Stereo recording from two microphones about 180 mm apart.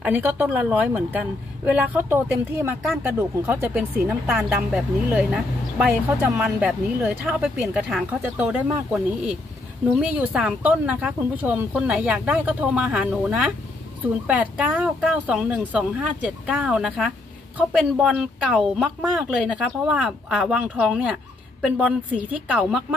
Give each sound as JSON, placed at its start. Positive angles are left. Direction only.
{"t": 0.0, "sound": "speech", "side_deg": -10}
{"t": 6.0, "sound": "speech", "side_deg": -15}
{"t": 6.4, "sound": "a woman's voice", "side_deg": -5}